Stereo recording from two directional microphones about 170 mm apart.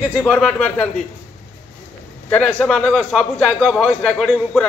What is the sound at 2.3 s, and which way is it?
A man's voice, 10° left (ahead or behind).